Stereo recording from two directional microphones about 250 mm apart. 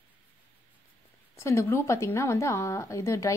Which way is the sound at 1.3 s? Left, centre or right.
Centre.